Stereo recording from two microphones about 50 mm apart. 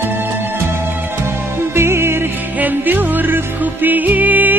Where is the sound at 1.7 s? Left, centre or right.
Right.